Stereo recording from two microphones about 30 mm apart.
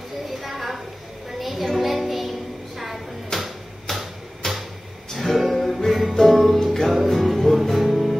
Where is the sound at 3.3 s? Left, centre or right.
Centre.